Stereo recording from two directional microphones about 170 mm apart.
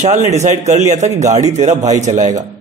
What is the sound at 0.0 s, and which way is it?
A man's voice, 45° right (ahead or behind).